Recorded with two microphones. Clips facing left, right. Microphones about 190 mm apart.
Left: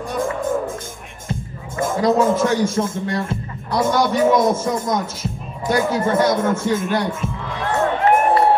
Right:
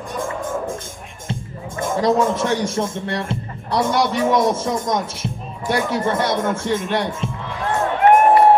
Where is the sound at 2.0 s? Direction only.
30° right (ahead or behind).